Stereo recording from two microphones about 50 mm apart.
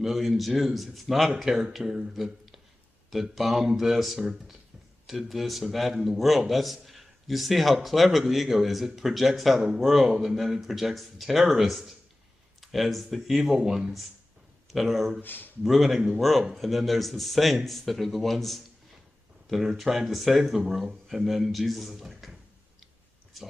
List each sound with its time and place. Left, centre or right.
0.0 s a man's voice: centre
15.2 s speech: left
15.6 s a man's voice: centre